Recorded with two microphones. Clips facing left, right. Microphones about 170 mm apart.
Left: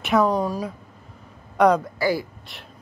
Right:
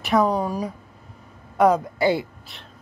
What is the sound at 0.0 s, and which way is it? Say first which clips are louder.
Speech: even; 5° right (ahead or behind).